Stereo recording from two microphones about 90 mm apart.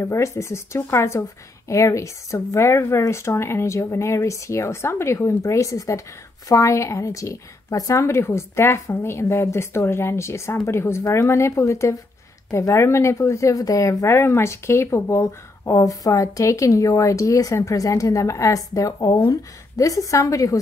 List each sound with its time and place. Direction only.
0.0 s speech: 35° left (ahead or behind)